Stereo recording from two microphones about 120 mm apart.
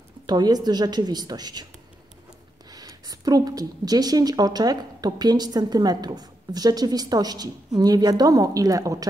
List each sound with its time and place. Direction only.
0.3 s a woman's voice: 35° right (ahead or behind)
2.7 s a woman's voice: 30° right (ahead or behind)